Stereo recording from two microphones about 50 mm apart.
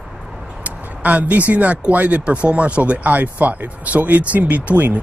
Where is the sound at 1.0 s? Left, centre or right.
Right.